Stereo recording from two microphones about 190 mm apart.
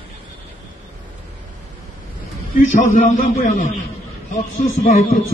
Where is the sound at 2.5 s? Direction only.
45° left (ahead or behind).